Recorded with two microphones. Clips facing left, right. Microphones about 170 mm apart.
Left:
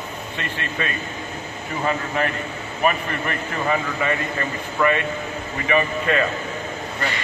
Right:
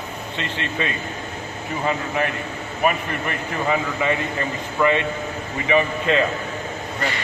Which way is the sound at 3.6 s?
15° right (ahead or behind).